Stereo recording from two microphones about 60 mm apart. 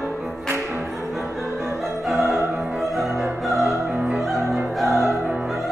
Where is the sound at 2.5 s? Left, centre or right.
Centre.